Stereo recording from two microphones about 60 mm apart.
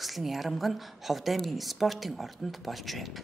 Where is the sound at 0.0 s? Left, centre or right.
Centre.